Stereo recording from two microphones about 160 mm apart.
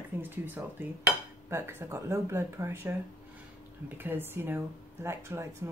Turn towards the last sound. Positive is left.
turn(degrees=-15)  # may be behind; listen again after turning